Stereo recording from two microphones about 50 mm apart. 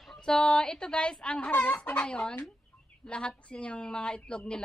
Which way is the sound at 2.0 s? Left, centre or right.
Left.